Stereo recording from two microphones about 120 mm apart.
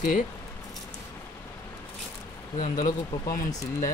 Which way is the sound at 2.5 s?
70° left (ahead or behind).